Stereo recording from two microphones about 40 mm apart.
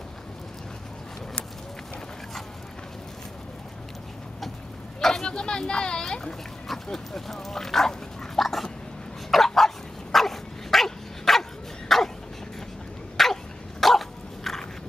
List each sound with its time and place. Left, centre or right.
5.2 s speech: centre
6.7 s speech: centre
8.4 s a sound: centre
9.3 s dog: centre
13.2 s dog: centre